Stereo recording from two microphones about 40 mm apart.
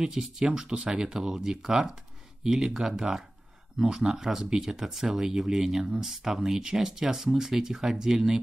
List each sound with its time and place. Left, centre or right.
0.0 s speech: centre